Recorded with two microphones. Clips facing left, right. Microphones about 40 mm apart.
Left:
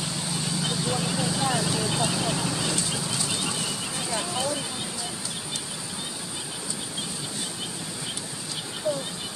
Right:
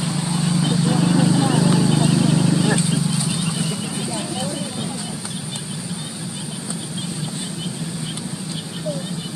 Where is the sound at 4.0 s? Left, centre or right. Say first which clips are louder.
Right 3 dB; centre.